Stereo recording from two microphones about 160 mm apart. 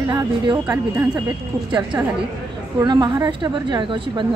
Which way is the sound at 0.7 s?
10° right (ahead or behind).